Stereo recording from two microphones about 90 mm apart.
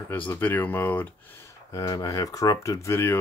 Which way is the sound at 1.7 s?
40° left (ahead or behind).